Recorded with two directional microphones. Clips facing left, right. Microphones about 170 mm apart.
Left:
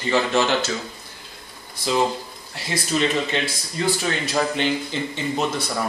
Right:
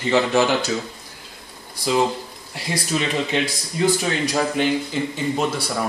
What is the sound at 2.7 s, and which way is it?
Speech, 10° right (ahead or behind).